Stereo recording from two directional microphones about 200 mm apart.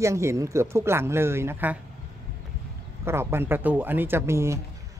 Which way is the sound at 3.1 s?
10° right (ahead or behind).